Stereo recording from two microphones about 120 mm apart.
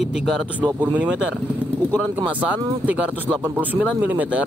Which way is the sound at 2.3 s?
10° right (ahead or behind).